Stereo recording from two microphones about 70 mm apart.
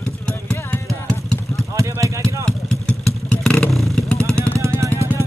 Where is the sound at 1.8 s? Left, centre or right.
Right.